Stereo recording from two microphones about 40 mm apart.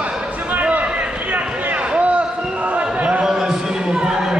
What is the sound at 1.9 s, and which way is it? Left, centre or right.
Basketball bounce, right.